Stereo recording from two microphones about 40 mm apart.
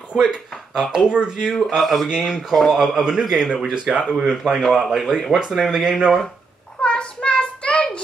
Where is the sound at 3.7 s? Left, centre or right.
Right.